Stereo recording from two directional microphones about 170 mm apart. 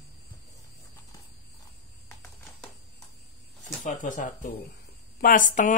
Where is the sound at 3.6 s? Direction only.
50° left (ahead or behind).